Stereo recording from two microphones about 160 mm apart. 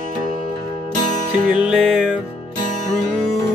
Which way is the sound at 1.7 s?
5° right (ahead or behind).